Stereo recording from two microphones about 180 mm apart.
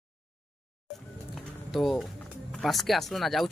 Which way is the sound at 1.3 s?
Centre (ahead or behind).